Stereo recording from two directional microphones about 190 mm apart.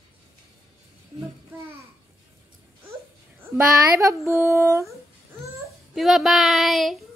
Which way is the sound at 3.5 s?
15° right (ahead or behind).